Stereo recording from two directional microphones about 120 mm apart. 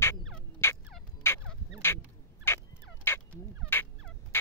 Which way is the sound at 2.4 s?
20° left (ahead or behind).